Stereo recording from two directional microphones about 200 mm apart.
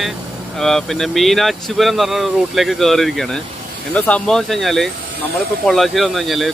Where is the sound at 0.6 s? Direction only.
Centre (ahead or behind).